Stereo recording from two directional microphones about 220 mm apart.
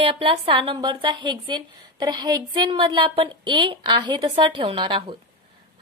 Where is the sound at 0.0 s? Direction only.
25° right (ahead or behind).